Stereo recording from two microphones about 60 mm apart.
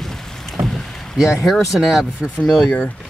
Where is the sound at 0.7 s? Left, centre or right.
Centre.